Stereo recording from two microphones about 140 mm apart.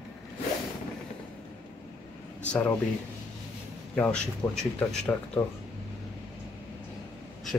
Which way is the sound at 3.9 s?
10° left (ahead or behind).